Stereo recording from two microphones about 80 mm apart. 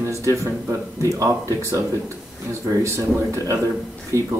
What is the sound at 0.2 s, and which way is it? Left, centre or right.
Speech, right.